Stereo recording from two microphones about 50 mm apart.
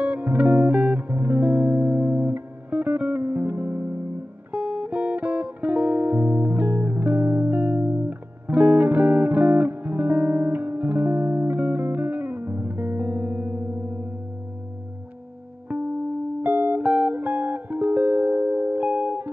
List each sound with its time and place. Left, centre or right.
0.0 s music: right
4.5 s guitar: right
15.7 s music: right